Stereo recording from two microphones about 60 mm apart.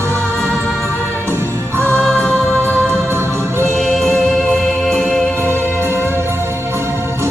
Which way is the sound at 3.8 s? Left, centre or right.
Centre.